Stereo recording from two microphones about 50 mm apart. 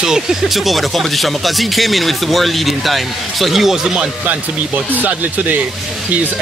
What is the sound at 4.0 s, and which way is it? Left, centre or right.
Speech, right.